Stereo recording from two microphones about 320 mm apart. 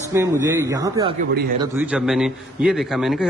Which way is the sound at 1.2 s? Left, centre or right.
Right.